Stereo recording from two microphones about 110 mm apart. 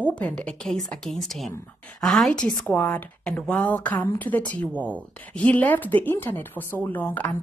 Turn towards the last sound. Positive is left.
turn(degrees=15)  # may be behind; listen again after turning